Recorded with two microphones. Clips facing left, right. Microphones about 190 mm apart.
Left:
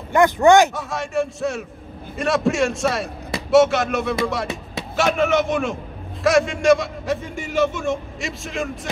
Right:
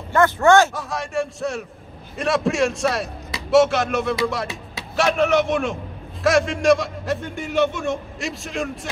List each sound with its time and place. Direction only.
0.1 s speech: 15° left (ahead or behind)
0.7 s a man's voice: centre (ahead or behind)